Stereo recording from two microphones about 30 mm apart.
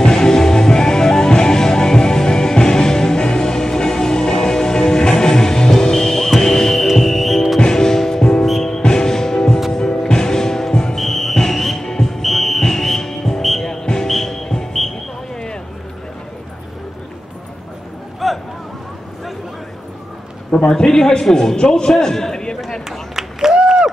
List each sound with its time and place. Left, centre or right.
0.0 s music: left; by 7.4 s centre
7.6 s music: centre
11.0 s music: centre
12.2 s music: centre
12.6 s music: centre
14.0 s music: centre
14.7 s a sound: centre
18.2 s a sound: centre
20.6 s a man's voice: left
22.8 s run: centre
23.5 s run: right